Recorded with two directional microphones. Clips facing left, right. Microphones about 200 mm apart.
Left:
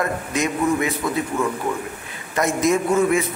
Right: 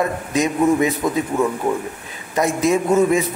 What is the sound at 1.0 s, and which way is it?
Speech, 15° right (ahead or behind).